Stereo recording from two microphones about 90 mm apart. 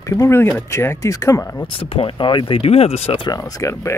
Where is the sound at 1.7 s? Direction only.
85° left.